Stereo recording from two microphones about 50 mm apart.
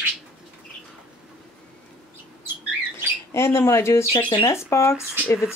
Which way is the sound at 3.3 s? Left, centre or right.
Left.